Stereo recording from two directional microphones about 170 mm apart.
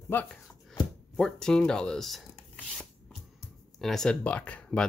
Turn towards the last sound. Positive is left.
turn(degrees=5)  # may be behind; listen again after turning